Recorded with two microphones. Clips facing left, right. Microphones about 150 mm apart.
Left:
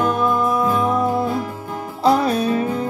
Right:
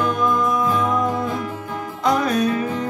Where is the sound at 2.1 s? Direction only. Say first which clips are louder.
Left 2 dB; 30° left (ahead or behind).